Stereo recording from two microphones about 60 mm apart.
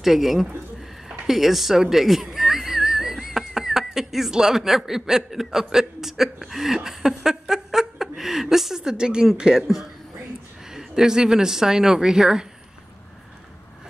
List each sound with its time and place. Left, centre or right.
0.0 s speech: centre
9.6 s speech: centre